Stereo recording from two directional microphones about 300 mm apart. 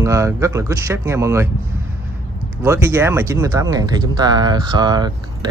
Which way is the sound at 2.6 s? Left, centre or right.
Centre.